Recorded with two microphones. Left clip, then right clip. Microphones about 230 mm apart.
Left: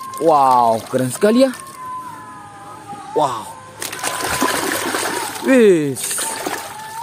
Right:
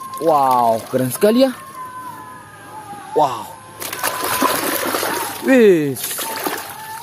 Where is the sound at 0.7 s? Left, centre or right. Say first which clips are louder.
Even; centre.